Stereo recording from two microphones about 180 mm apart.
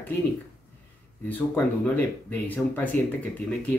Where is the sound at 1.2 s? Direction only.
10° left (ahead or behind).